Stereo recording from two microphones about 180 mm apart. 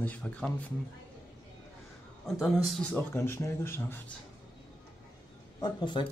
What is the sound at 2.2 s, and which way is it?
Speech, centre (ahead or behind).